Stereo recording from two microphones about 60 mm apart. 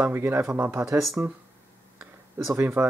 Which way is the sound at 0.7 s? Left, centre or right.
Right.